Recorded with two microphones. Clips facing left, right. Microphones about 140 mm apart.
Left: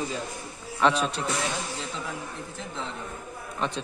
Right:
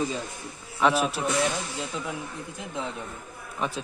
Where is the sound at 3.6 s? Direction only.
5° right (ahead or behind).